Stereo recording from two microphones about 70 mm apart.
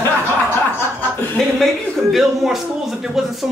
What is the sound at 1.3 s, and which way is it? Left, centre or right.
A man's voice, centre.